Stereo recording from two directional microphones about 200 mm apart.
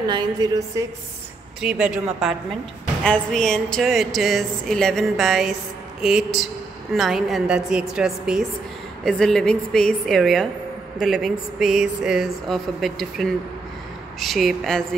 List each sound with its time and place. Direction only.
0.0 s a woman's voice: 20° right (ahead or behind)
1.6 s a woman's voice: 5° right (ahead or behind)